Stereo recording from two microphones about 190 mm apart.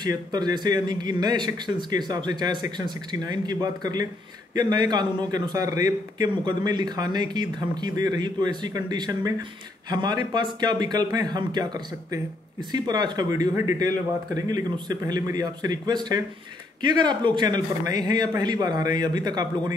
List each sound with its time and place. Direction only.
0.0 s speech: 20° right (ahead or behind)